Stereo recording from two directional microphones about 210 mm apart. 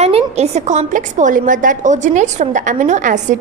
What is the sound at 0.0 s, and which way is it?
A woman's voice, 30° right (ahead or behind).